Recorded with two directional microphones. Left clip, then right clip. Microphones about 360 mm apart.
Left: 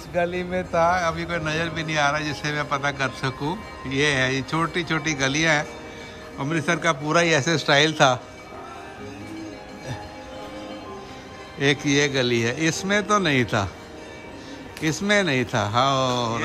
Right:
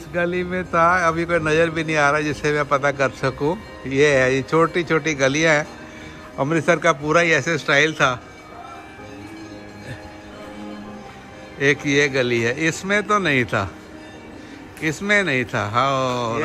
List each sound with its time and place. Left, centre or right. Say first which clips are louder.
0.1 s a man's voice: right 2 dB; centre
11.6 s speech: right 3 dB; centre
14.8 s speech: right 2 dB; centre